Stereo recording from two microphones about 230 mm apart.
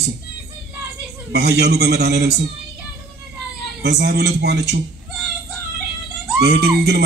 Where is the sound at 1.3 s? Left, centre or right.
Right.